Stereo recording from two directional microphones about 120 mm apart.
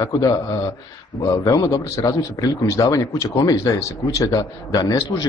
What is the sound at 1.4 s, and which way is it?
A man's voice, 30° left (ahead or behind).